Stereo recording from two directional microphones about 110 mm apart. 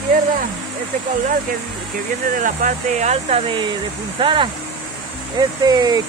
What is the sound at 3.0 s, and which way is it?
Speech, 90° right.